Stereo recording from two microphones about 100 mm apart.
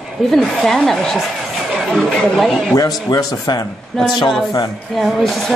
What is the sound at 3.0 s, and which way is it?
Speech, 40° left (ahead or behind).